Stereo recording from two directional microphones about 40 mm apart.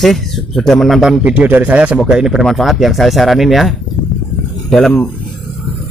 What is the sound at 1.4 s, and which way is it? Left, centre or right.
Speech, right.